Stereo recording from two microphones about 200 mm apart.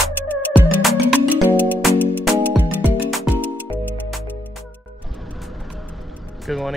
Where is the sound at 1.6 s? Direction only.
10° left (ahead or behind).